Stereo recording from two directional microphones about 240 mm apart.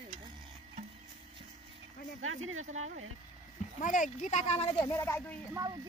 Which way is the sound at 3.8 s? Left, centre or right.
Left.